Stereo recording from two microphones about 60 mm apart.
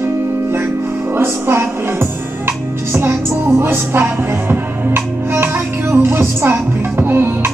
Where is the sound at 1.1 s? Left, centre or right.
Right.